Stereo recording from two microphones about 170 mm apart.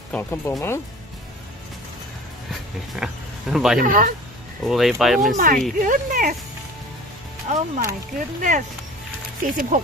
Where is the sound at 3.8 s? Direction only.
55° right (ahead or behind).